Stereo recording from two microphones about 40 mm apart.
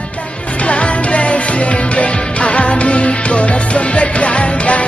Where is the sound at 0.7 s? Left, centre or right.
Left.